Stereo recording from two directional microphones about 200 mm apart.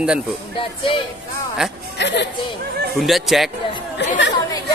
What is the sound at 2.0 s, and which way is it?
Speech, 60° left (ahead or behind).